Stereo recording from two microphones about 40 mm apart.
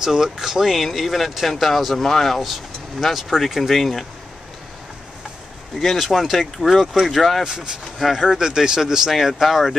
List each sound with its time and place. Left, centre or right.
0.0 s speech: centre
5.9 s speech: centre
7.4 s speech: centre
9.1 s speech: centre